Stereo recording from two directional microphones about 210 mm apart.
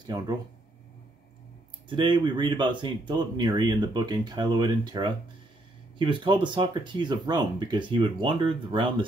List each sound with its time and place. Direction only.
0.0 s speech: 20° right (ahead or behind)
1.9 s speech: 20° right (ahead or behind)